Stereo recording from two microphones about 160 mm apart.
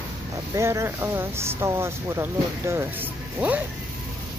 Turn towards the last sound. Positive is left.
turn(degrees=-10)  # may be behind; listen again after turning